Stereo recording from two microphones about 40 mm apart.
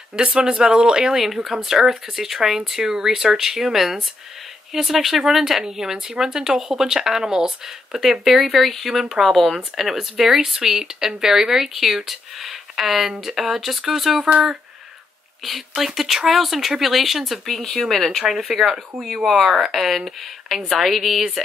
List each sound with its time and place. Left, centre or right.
0.1 s speech: right
1.2 s speech: centre
15.7 s speech: centre